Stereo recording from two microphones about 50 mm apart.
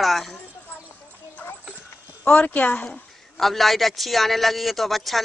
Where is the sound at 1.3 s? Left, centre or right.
Left.